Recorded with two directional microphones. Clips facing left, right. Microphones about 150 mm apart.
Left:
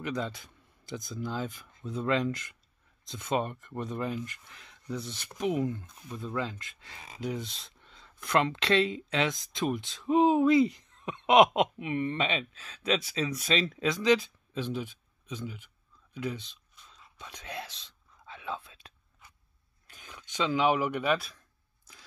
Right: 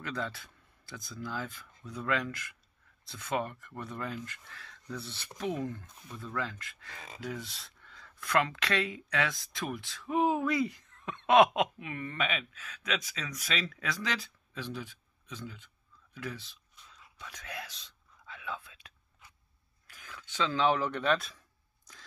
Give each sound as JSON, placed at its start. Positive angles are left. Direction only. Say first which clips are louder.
{"t": 0.0, "sound": "speech", "louder": "left 4 dB", "side_deg": 20}
{"t": 17.2, "sound": "whispering", "louder": "left 3 dB", "side_deg": 25}
{"t": 19.9, "sound": "speech", "louder": "even", "side_deg": 20}